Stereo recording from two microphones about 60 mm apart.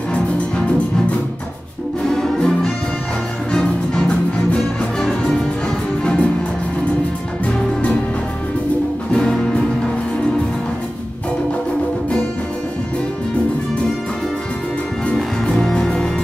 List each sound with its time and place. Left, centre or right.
2.1 s music: centre
6.0 s music: centre
7.4 s music: centre
9.1 s music: centre
15.1 s music: centre